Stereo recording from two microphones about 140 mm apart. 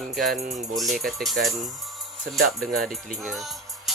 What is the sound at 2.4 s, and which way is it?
Speech, 90° right.